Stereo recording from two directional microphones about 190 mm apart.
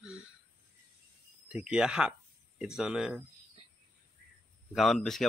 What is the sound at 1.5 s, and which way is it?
Speech, 5° right (ahead or behind).